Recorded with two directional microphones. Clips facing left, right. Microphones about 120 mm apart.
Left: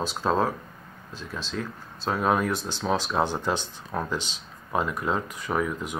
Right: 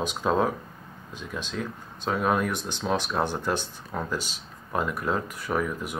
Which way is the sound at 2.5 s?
15° right (ahead or behind).